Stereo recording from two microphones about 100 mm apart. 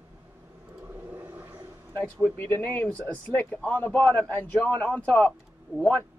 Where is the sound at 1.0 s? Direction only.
20° right (ahead or behind).